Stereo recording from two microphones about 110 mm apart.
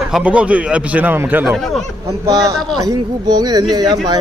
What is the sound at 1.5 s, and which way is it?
Speech, centre (ahead or behind).